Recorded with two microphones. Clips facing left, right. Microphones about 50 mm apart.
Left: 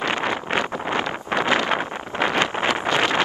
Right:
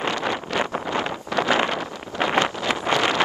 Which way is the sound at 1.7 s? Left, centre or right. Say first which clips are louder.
Left 4 dB; left.